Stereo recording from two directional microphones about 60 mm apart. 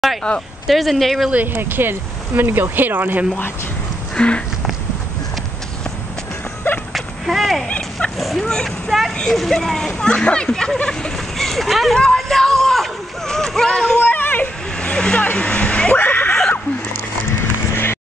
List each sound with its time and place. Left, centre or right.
0.7 s speech: centre
1.3 s speech: right
4.1 s horse: centre
6.9 s a sound: centre
7.6 s dog: left
8.2 s speech: centre
13.9 s a sound: left
14.8 s vehicle: centre
15.3 s speech: centre
16.0 s a sound: left
17.4 s clip-clop: left